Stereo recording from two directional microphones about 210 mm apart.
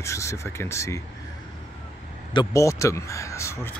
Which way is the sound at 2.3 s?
20° left (ahead or behind).